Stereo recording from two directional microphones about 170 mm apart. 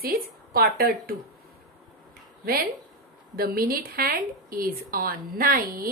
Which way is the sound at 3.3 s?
60° right (ahead or behind).